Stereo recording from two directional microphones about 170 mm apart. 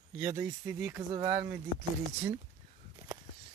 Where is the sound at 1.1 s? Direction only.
25° right (ahead or behind).